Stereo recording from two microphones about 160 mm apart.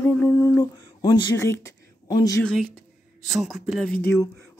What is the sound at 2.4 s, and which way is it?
Speech, 5° left (ahead or behind).